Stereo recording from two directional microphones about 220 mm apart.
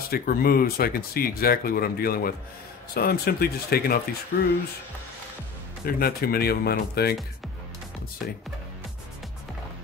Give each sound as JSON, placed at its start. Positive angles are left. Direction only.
{"t": 0.1, "sound": "speech", "side_deg": 40}
{"t": 5.9, "sound": "speech", "side_deg": 45}